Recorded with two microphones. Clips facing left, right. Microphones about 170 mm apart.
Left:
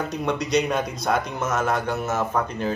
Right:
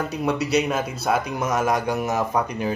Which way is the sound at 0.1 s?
5° right (ahead or behind).